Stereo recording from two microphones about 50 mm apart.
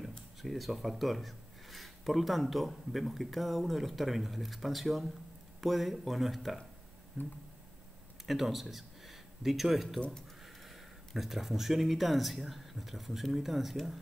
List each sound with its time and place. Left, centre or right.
0.4 s speech: centre
9.9 s speech: left
10.4 s speech: centre